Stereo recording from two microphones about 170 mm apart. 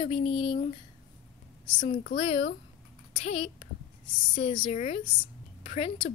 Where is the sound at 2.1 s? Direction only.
30° left (ahead or behind).